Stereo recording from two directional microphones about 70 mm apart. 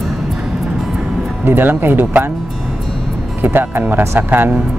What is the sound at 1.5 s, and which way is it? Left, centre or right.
Speech, right.